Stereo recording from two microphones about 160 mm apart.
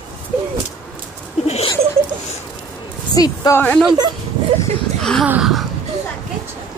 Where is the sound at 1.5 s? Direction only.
40° left (ahead or behind).